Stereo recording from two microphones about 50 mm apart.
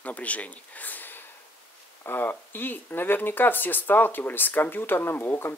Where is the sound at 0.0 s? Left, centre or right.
Left.